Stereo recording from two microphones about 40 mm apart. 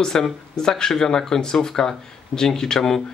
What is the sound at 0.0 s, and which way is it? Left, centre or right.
Speech, centre.